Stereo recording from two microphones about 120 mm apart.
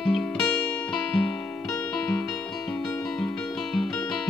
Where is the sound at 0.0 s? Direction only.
5° left (ahead or behind).